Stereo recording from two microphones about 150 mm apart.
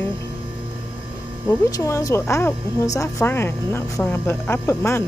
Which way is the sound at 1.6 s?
20° left (ahead or behind).